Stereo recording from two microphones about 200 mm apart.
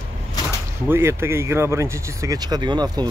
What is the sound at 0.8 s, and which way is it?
Speech, 10° right (ahead or behind).